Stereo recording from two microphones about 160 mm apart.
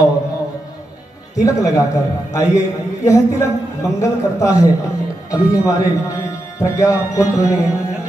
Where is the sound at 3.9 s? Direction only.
20° left (ahead or behind).